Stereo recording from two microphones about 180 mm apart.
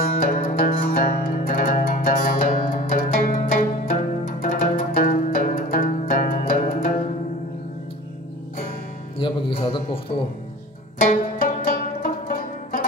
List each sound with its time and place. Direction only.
0.0 s music: 50° left (ahead or behind)
3.9 s zither: 45° left (ahead or behind)
9.2 s music: 30° left (ahead or behind)
11.1 s zither: 50° left (ahead or behind)